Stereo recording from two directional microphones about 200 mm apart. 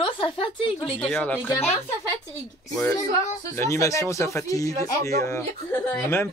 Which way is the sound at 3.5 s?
15° left (ahead or behind).